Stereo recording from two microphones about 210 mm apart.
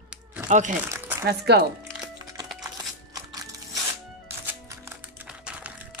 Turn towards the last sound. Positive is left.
turn(degrees=-5)  # may be behind; listen again after turning